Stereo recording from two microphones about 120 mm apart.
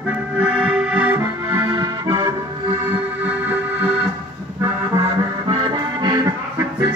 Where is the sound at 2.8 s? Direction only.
15° right (ahead or behind).